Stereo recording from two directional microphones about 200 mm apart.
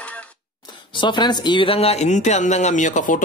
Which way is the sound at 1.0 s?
20° left (ahead or behind).